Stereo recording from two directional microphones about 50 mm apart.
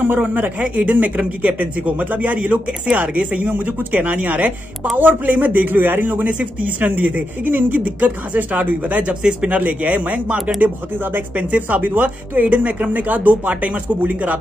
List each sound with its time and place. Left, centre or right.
0.0 s a man's voice: right